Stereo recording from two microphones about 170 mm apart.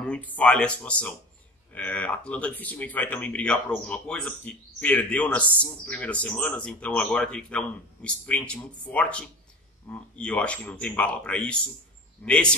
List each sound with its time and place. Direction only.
0.0 s a man's voice: 5° left (ahead or behind)